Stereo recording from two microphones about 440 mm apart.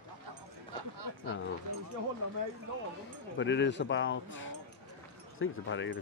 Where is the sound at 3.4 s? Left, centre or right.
Left.